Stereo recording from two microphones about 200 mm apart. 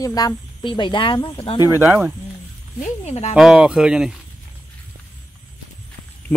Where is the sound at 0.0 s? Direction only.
20° left (ahead or behind).